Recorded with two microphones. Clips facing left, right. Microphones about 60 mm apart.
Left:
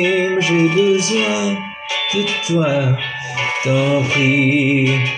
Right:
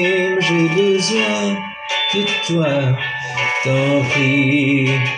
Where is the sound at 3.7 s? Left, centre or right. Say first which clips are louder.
Left 1 dB; right.